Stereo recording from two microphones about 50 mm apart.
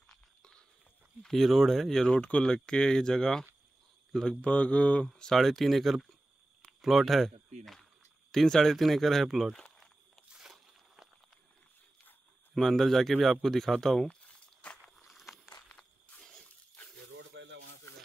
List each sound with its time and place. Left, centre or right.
0.1 s a sound: centre
1.2 s a man's voice: centre
2.0 s speech: centre
4.4 s speech: left
5.1 s speech: centre
5.4 s a man's voice: centre
9.6 s walk: centre
12.5 s a man's voice: centre
14.0 s crumpling: left
15.0 s a sound: centre
15.7 s walk: centre
16.4 s a sound: left